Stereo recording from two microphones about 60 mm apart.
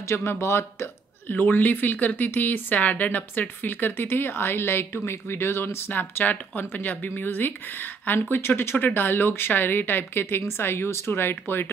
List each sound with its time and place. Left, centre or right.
0.1 s speech: left
1.3 s speech: left
5.9 s speech: left
8.7 s speech: left